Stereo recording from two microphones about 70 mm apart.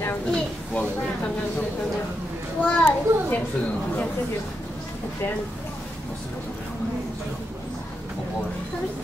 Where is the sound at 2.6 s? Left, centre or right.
Left.